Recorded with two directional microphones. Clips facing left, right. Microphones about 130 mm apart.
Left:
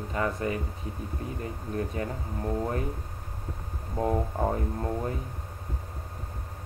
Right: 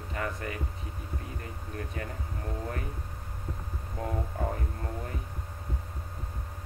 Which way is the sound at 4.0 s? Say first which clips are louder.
Left 7 dB; 30° left (ahead or behind).